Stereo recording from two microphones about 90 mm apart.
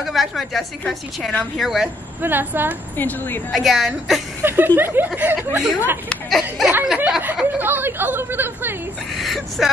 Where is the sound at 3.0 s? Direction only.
20° left (ahead or behind).